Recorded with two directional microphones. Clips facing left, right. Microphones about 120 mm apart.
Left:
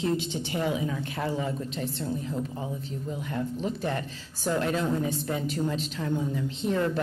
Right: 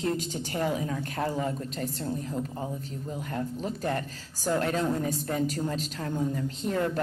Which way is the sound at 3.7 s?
40° right (ahead or behind).